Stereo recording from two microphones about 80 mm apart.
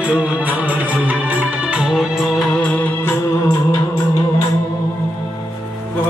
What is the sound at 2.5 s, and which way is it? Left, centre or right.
Music, centre.